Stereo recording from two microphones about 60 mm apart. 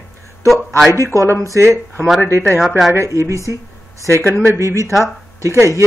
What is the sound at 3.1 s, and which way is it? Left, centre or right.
Speech, right.